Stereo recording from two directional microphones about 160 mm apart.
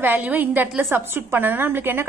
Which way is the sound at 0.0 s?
10° right (ahead or behind).